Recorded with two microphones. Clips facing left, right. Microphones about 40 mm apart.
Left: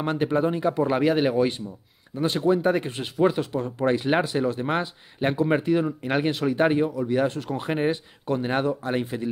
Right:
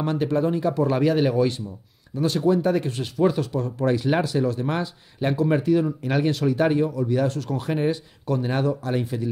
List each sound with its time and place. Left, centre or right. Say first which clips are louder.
0.0 s speech: right 1 dB; left